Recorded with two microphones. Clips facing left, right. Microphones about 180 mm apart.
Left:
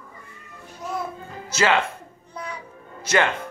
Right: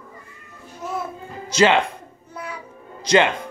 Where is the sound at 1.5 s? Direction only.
20° right (ahead or behind).